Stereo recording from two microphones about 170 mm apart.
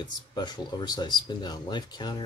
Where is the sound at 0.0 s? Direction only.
25° left (ahead or behind).